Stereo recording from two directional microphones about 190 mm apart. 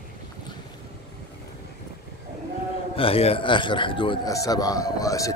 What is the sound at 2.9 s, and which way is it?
A man's voice, 30° left (ahead or behind).